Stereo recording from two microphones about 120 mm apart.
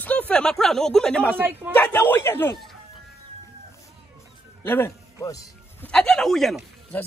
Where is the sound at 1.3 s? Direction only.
15° right (ahead or behind).